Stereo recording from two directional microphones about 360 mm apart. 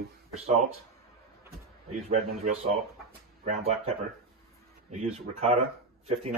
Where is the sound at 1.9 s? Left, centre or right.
Centre.